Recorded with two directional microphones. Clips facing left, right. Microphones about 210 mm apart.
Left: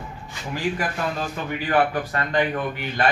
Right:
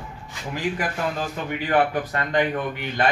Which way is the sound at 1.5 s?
20° right (ahead or behind).